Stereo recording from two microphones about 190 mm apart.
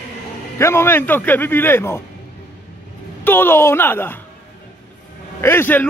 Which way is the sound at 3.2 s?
10° left (ahead or behind).